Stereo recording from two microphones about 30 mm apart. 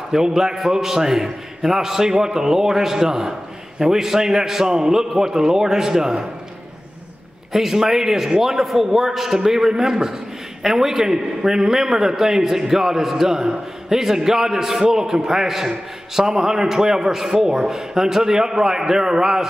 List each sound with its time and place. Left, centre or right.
0.1 s a man's voice: centre
7.5 s a man's voice: centre